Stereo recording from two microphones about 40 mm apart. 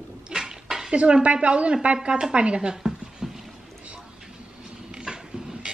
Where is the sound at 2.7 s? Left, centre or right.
Centre.